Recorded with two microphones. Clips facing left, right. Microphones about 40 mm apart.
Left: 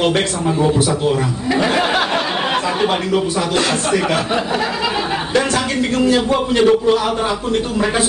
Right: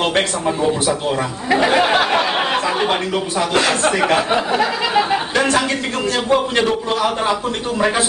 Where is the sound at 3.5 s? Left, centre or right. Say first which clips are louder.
Right 2 dB; centre.